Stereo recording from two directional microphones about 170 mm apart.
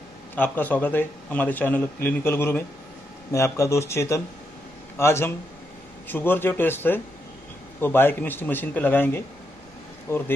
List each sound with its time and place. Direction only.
0.4 s a man's voice: 10° left (ahead or behind)